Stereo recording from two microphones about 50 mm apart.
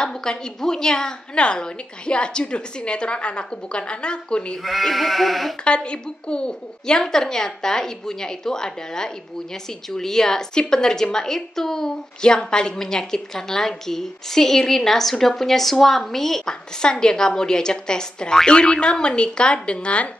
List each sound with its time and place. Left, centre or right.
0.0 s a woman's voice: centre
4.6 s sheep: centre
5.6 s a woman's voice: left